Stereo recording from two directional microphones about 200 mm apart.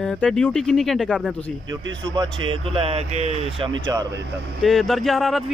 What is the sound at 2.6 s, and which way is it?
Speech, 30° right (ahead or behind).